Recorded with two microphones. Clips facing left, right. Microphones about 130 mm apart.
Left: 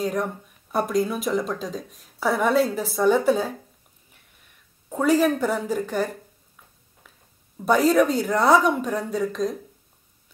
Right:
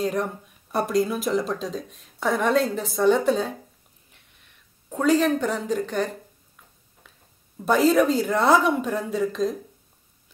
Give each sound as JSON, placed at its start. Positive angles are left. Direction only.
{"t": 0.0, "sound": "speech", "side_deg": 0}
{"t": 4.8, "sound": "speech", "side_deg": 10}
{"t": 7.0, "sound": "a sound", "side_deg": 5}
{"t": 7.6, "sound": "speech", "side_deg": 0}